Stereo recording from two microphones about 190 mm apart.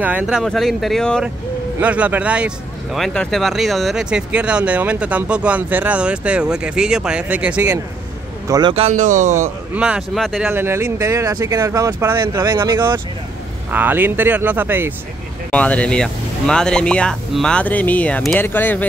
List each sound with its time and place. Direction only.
0.0 s speech: 5° right (ahead or behind)
1.8 s speech: 5° right (ahead or behind)
8.5 s speech: 20° right (ahead or behind); by 9.5 s 40° right (ahead or behind)
9.8 s speech: 5° right (ahead or behind)
10.5 s speech: 15° right (ahead or behind)
15.5 s speech: 5° left (ahead or behind)